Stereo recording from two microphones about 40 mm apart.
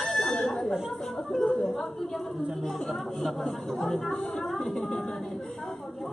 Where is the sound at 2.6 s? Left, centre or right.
Centre.